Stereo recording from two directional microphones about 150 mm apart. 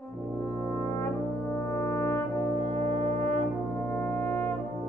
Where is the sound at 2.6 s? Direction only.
40° right (ahead or behind).